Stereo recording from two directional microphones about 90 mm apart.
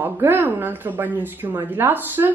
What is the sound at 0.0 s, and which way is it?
A woman's voice, 25° right (ahead or behind).